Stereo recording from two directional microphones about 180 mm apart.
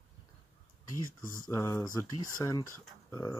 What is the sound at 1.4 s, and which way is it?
Speech, 15° left (ahead or behind).